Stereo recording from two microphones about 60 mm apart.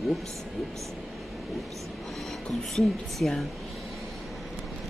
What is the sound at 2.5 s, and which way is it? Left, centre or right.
Speech, centre.